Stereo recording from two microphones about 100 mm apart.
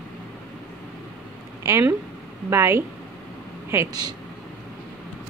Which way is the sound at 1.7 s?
30° right (ahead or behind).